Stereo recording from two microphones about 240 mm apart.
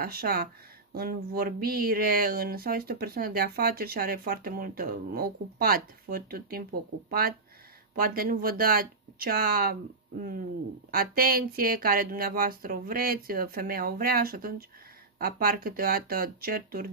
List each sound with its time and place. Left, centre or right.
0.0 s speech: right
10.9 s speech: right